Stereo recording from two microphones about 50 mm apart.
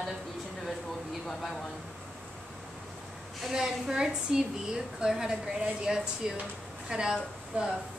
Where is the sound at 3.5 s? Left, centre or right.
Centre.